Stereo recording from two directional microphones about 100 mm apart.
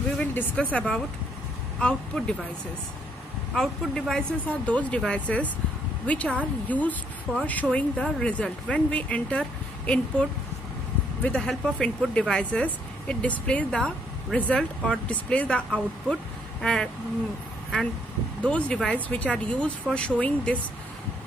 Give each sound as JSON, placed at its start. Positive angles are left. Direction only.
{"t": 0.2, "sound": "speech", "side_deg": 20}
{"t": 3.5, "sound": "speech", "side_deg": 5}
{"t": 4.5, "sound": "speech", "side_deg": 15}
{"t": 11.2, "sound": "speech", "side_deg": 10}